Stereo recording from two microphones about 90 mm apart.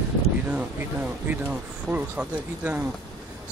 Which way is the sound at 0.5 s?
15° right (ahead or behind).